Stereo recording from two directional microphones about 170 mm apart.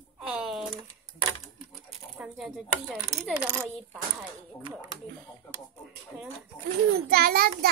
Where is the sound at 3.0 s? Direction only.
10° right (ahead or behind).